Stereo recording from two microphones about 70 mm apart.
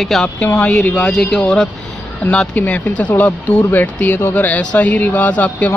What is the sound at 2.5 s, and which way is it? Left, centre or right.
Speech, left.